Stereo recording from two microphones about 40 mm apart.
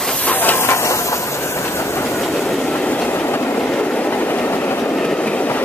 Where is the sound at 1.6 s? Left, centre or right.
Left.